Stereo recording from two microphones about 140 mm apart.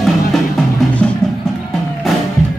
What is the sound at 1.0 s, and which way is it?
Music, 5° left (ahead or behind).